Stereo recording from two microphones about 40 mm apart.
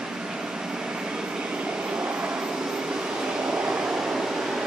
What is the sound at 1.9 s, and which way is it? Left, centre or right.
Vehicle, right.